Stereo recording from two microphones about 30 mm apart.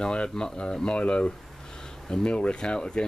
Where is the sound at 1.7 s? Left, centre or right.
Left.